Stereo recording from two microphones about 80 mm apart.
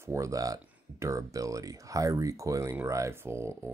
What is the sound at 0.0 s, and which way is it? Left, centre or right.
Speech, right.